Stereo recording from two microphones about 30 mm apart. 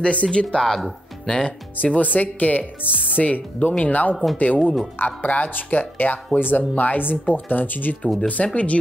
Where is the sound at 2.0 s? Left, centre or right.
Left.